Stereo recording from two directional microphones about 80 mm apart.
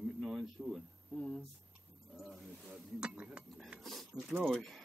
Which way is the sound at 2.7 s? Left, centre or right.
Centre.